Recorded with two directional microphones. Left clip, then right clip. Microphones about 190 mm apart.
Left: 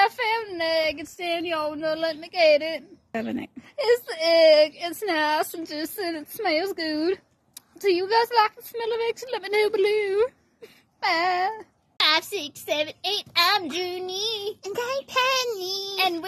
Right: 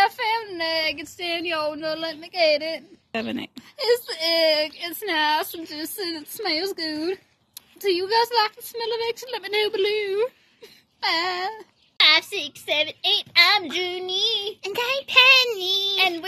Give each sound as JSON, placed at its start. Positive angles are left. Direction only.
{"t": 0.0, "sound": "speech", "side_deg": 60}
{"t": 3.1, "sound": "speech", "side_deg": 0}
{"t": 3.7, "sound": "a child's voice", "side_deg": 50}
{"t": 14.6, "sound": "child singing", "side_deg": 10}
{"t": 16.0, "sound": "a child's voice", "side_deg": 50}